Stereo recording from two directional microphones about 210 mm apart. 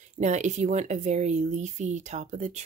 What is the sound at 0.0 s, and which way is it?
Speech, 35° right (ahead or behind).